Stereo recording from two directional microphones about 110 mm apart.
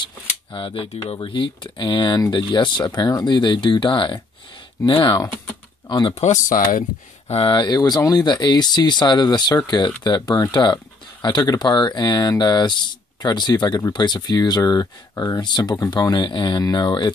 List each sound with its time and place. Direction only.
0.0 s speech: 50° left (ahead or behind)
6.0 s speech: 70° left (ahead or behind)
7.5 s speech: 40° left (ahead or behind)